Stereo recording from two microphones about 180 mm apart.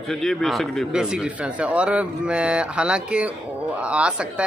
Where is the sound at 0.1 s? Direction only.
Centre (ahead or behind).